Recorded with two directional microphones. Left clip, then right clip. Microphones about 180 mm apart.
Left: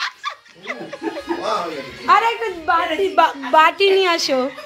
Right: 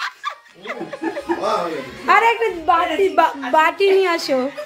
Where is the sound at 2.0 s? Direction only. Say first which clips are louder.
Right 1 dB; 15° right (ahead or behind).